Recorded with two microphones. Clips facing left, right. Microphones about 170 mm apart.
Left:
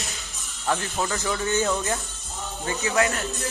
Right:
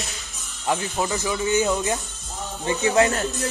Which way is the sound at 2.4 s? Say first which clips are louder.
Right 5 dB; 20° right (ahead or behind).